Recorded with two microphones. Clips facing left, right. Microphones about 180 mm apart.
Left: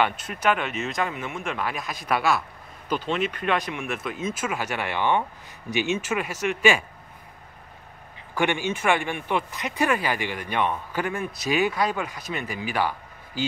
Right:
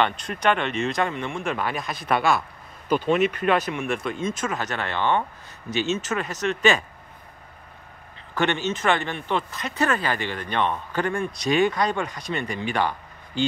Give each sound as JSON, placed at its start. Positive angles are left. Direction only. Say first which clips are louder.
{"t": 0.0, "sound": "speech", "louder": "right 1 dB", "side_deg": 5}
{"t": 2.9, "sound": "speech", "louder": "right 5 dB", "side_deg": -45}
{"t": 3.4, "sound": "speech", "louder": "right 4 dB", "side_deg": -5}
{"t": 8.4, "sound": "speech", "louder": "right 1 dB", "side_deg": 10}